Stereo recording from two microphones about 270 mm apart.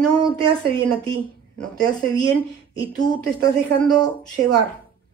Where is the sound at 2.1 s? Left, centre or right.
Centre.